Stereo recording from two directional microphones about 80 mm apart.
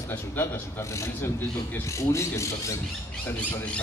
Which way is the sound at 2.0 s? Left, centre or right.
Left.